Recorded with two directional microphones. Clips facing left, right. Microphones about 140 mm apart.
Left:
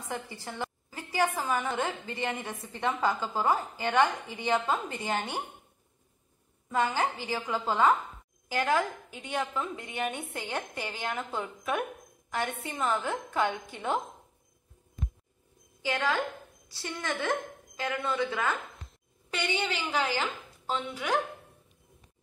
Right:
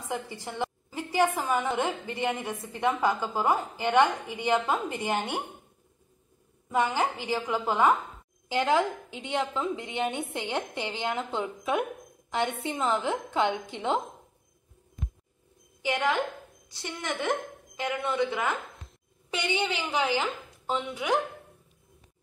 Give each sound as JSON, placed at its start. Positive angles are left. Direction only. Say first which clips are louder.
{"t": 0.1, "sound": "a woman's voice", "louder": "right 3 dB", "side_deg": -20}
{"t": 6.7, "sound": "a woman's voice", "louder": "right 2 dB", "side_deg": -15}
{"t": 15.8, "sound": "a woman's voice", "louder": "right 2 dB", "side_deg": -20}